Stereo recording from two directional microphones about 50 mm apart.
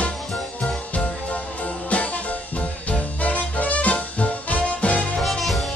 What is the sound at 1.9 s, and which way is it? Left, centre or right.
Music, left.